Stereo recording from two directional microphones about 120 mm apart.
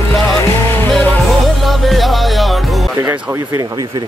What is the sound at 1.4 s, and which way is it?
Music, centre (ahead or behind).